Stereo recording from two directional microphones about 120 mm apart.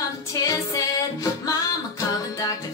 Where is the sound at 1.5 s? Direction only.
30° left (ahead or behind).